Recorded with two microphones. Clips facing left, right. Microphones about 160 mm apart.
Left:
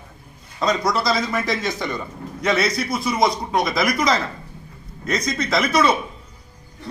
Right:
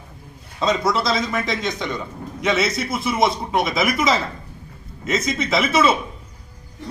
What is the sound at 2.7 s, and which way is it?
Speech, 25° right (ahead or behind).